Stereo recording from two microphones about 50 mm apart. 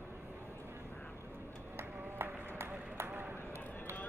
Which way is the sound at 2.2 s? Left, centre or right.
Right.